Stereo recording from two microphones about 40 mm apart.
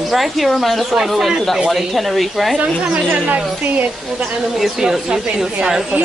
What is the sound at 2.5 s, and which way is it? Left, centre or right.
Speech, right.